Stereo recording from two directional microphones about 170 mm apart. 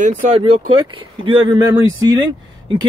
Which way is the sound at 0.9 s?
25° right (ahead or behind).